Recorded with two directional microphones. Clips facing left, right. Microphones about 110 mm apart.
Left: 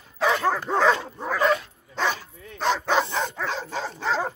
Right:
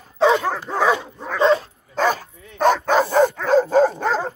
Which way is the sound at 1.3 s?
30° right (ahead or behind).